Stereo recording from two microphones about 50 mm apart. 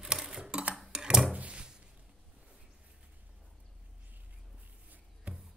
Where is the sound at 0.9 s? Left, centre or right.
Centre.